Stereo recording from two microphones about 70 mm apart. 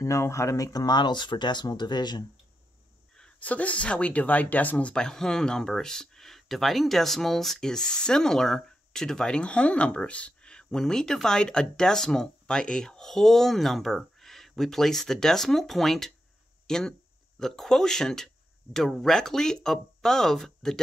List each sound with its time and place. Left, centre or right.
0.0 s speech: left
3.3 s speech: left; by 20.8 s centre